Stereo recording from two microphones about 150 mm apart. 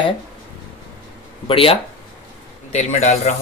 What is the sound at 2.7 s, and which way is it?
Speech, 50° left (ahead or behind).